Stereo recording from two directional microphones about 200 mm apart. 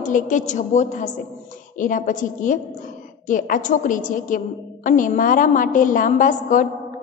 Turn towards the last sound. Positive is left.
turn(degrees=40)  # may be behind; listen again after turning